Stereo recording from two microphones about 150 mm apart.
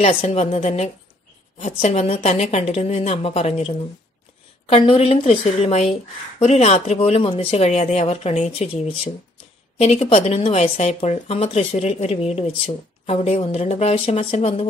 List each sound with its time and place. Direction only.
0.0 s speech: 45° left (ahead or behind)